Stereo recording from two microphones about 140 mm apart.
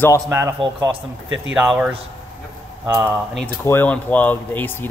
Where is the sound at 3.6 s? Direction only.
15° left (ahead or behind).